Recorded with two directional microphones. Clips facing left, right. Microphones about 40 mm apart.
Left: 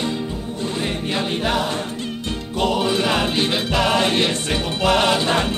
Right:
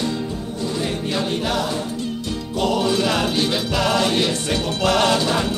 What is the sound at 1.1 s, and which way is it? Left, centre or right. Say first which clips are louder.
Music: left 2 dB; left.